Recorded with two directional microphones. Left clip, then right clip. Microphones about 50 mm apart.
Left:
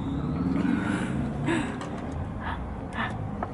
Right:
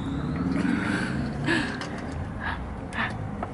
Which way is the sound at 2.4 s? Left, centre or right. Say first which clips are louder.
Right 3 dB; centre.